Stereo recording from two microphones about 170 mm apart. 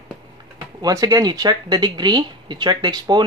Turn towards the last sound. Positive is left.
turn(degrees=-25)  # may be behind; listen again after turning